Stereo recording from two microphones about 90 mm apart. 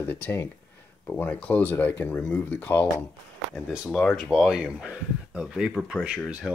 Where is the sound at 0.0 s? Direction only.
20° left (ahead or behind).